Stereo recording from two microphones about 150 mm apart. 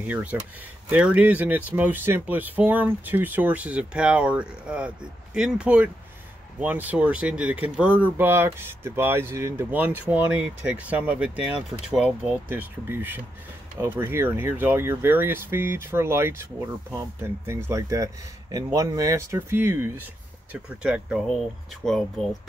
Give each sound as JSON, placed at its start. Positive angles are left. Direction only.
{"t": 0.0, "sound": "speech", "side_deg": -10}
{"t": 17.6, "sound": "speech", "side_deg": -20}